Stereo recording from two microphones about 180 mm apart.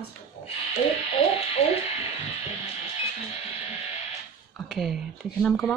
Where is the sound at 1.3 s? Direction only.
35° left (ahead or behind).